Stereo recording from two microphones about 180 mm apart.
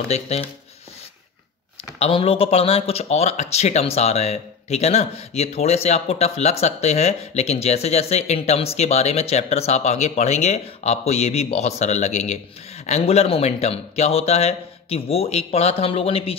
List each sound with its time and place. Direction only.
0.1 s speech: 35° left (ahead or behind)
2.0 s speech: 30° left (ahead or behind)